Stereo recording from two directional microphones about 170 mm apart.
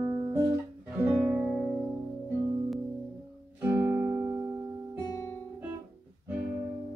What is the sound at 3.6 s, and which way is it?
Music, 10° right (ahead or behind).